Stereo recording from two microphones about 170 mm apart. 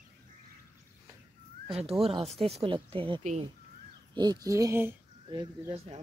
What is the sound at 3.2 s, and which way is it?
Speech, 45° right (ahead or behind).